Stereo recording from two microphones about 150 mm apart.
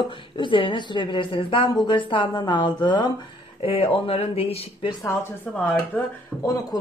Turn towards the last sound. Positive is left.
turn(degrees=25)  # may be behind; listen again after turning